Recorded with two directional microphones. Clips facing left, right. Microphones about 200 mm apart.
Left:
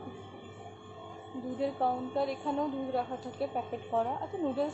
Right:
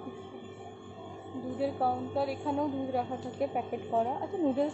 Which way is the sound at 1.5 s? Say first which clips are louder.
Right 1 dB; 5° right (ahead or behind).